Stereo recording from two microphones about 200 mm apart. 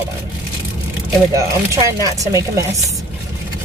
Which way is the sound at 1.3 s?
15° right (ahead or behind).